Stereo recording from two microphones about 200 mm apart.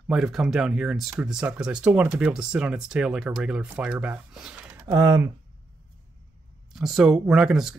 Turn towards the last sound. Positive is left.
turn(degrees=-5)  # may be behind; listen again after turning